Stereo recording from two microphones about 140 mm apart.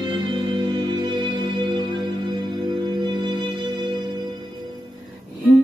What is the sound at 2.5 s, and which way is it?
Music, 30° right (ahead or behind).